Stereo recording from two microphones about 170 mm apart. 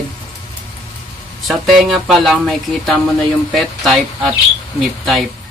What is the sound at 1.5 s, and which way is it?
Speech, centre (ahead or behind).